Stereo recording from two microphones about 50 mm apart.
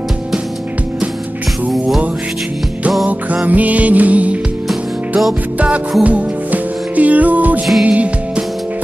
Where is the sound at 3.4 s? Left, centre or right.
Right.